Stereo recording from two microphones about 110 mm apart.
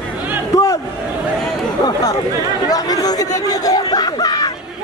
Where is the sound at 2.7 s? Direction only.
35° left (ahead or behind).